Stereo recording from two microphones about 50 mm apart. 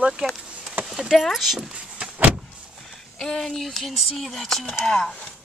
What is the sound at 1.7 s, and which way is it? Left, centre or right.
Vehicle, right.